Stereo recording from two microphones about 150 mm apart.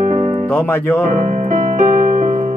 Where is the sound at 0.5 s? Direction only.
15° left (ahead or behind).